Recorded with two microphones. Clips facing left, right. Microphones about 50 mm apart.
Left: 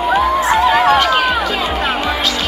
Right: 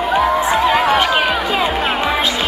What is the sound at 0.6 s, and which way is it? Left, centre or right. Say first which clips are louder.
Music: left 3 dB; centre.